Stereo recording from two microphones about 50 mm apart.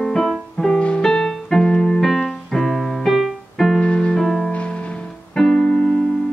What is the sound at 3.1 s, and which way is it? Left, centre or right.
Music, centre.